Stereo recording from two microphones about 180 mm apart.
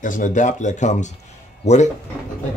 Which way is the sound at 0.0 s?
45° left (ahead or behind).